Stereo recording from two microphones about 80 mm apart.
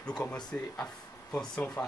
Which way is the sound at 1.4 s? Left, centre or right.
Centre.